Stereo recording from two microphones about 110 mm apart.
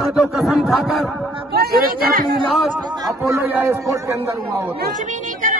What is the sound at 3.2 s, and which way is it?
Speech, 25° right (ahead or behind).